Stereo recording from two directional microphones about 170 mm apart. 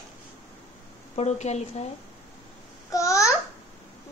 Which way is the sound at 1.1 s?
40° left (ahead or behind).